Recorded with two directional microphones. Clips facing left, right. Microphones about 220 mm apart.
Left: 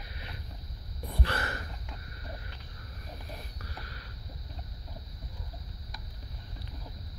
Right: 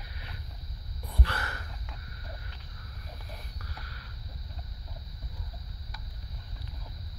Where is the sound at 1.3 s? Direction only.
25° left (ahead or behind).